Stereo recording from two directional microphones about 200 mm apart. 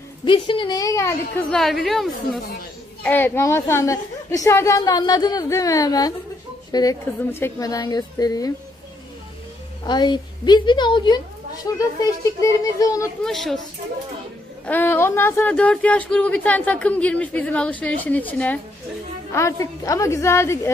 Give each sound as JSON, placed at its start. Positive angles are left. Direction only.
{"t": 0.2, "sound": "a woman's voice", "side_deg": 25}
{"t": 1.5, "sound": "a woman's voice", "side_deg": 0}
{"t": 9.8, "sound": "a woman's voice", "side_deg": 20}
{"t": 12.4, "sound": "speech", "side_deg": 15}
{"t": 13.2, "sound": "a woman's voice", "side_deg": 0}
{"t": 14.7, "sound": "speech", "side_deg": 10}